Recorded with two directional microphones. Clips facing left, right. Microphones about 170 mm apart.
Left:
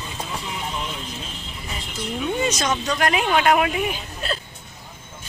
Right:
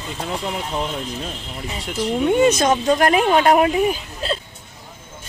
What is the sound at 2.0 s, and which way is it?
Speech, 65° right (ahead or behind).